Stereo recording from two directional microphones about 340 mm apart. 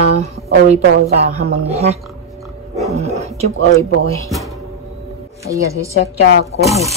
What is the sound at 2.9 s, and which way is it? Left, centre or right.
Dog, centre.